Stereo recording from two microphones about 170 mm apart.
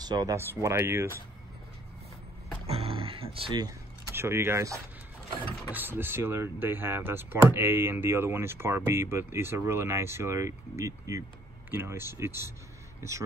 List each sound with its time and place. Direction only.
0.0 s speech: 20° right (ahead or behind)
2.6 s music: 35° right (ahead or behind)
4.1 s speech: 15° right (ahead or behind)